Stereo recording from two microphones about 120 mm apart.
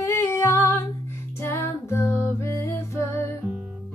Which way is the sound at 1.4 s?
20° left (ahead or behind).